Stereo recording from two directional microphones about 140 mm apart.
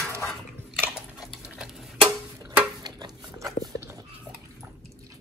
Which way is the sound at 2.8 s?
30° right (ahead or behind).